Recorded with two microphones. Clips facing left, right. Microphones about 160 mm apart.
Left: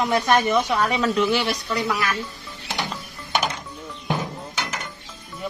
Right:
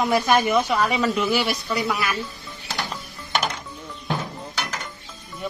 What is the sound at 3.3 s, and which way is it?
Music, 15° left (ahead or behind).